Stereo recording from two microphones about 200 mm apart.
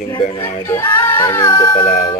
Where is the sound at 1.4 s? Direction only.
25° left (ahead or behind).